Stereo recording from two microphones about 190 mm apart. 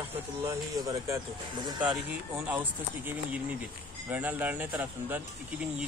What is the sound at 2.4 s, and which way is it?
Speech, 10° right (ahead or behind).